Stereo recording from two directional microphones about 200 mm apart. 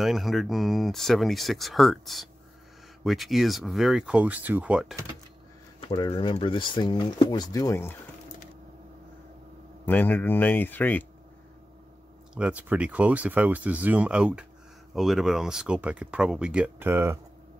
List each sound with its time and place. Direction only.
0.0 s speech: centre (ahead or behind)
5.8 s speech: 25° left (ahead or behind)
9.8 s speech: 10° left (ahead or behind)
12.4 s speech: 5° right (ahead or behind)